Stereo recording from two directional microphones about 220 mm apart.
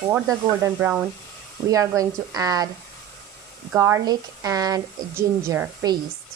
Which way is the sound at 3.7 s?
15° right (ahead or behind).